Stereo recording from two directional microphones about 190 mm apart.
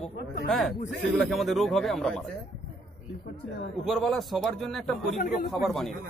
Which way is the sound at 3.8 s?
Centre (ahead or behind).